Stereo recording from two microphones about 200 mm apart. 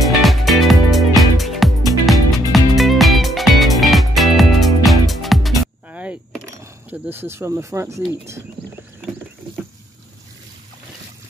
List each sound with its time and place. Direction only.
0.0 s music: centre (ahead or behind)
5.9 s keys jangling: 5° right (ahead or behind)